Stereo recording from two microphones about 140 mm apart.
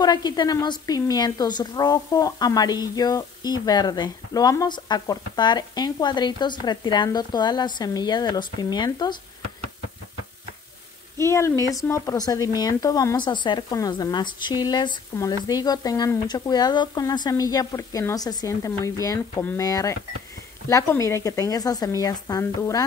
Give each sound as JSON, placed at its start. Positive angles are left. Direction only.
{"t": 0.0, "sound": "a woman's voice", "side_deg": 30}
{"t": 11.1, "sound": "a woman's voice", "side_deg": 20}